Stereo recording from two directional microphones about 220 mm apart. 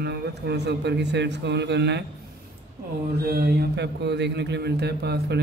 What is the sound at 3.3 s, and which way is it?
A man's voice, 45° right (ahead or behind).